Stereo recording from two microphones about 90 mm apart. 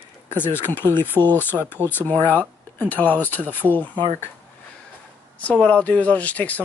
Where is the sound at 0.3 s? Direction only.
20° left (ahead or behind).